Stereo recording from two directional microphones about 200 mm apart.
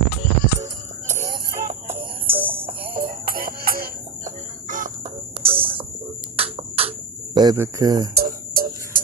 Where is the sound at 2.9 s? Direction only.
45° right (ahead or behind).